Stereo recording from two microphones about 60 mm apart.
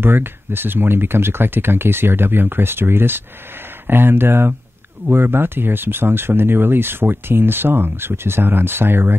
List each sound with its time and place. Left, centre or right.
0.0 s speech: right